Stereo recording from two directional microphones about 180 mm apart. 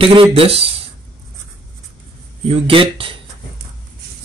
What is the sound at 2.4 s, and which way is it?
Speech, 30° right (ahead or behind).